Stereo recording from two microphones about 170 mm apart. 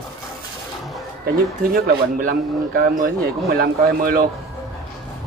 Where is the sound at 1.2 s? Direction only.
65° right (ahead or behind).